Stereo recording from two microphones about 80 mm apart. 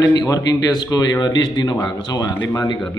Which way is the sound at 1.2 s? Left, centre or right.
Left.